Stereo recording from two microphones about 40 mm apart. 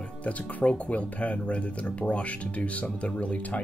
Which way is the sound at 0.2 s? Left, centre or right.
Left.